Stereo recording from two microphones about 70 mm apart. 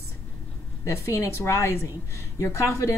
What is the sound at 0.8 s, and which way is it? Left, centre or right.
A woman's voice, left.